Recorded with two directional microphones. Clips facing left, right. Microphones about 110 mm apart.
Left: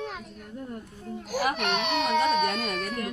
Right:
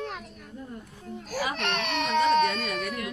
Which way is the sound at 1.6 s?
15° left (ahead or behind).